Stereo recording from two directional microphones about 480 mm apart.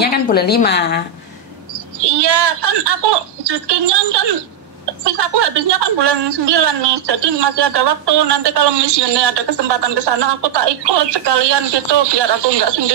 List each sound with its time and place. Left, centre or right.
0.0 s a woman's voice: centre
2.0 s a woman's voice: right